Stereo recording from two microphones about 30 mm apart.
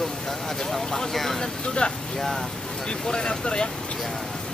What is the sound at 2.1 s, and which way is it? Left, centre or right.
Speech, centre.